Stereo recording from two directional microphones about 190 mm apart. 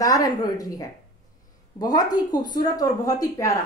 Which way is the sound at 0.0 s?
20° left (ahead or behind).